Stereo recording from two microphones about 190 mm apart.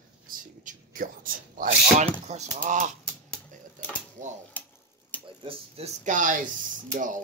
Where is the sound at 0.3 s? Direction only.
45° right (ahead or behind).